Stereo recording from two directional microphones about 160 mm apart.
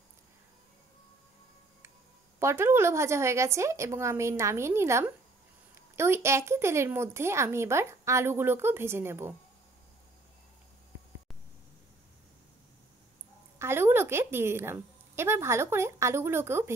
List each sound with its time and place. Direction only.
2.4 s speech: 15° right (ahead or behind)
13.6 s speech: 15° right (ahead or behind)